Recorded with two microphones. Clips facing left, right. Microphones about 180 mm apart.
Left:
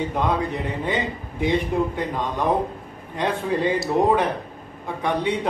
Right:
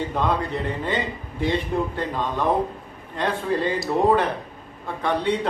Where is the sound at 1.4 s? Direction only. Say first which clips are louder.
Left 2 dB; 15° left (ahead or behind).